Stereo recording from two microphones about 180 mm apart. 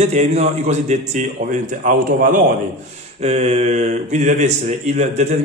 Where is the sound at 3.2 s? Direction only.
35° right (ahead or behind).